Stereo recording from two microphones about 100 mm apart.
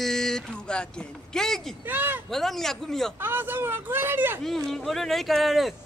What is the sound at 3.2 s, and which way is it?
Speech, 20° right (ahead or behind).